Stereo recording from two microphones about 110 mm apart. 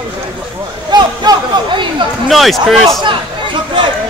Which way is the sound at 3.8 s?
50° right (ahead or behind).